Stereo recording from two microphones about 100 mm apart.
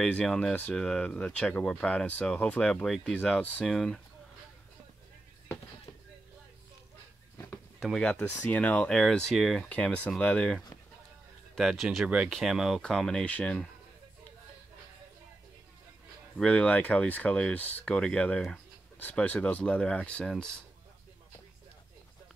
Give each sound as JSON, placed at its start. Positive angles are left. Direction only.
{"t": 0.0, "sound": "speech", "side_deg": 10}
{"t": 7.3, "sound": "a sound", "side_deg": 25}
{"t": 7.8, "sound": "speech", "side_deg": 5}
{"t": 9.7, "sound": "speech", "side_deg": 10}
{"t": 11.5, "sound": "speech", "side_deg": 0}
{"t": 16.3, "sound": "speech", "side_deg": 10}